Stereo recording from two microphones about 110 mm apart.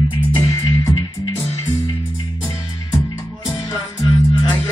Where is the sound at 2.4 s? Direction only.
30° left (ahead or behind).